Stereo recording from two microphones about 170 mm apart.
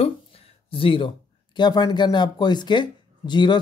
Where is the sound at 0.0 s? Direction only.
35° left (ahead or behind).